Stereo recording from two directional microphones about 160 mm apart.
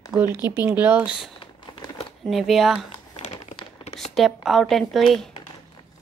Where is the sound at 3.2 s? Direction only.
45° left (ahead or behind).